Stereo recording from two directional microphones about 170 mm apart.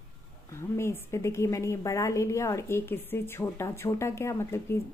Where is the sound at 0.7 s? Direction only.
15° left (ahead or behind).